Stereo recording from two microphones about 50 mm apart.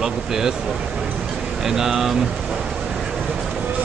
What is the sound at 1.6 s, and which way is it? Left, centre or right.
Speech, centre.